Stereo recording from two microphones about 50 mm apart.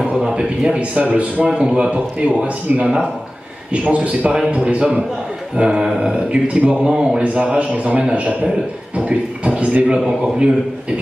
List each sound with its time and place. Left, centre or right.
0.0 s a man's voice: centre
5.6 s a man's voice: centre
6.8 s speech: centre
7.3 s a man's voice: right